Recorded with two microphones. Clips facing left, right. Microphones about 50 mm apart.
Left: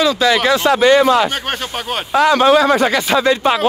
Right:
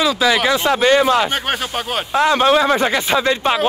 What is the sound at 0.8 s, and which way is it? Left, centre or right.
Speech, centre.